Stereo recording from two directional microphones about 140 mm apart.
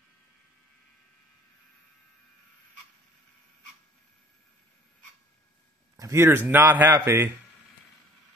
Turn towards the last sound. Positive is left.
turn(degrees=-15)  # may be behind; listen again after turning